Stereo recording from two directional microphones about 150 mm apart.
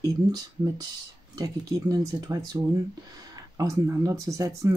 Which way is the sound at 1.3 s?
25° right (ahead or behind).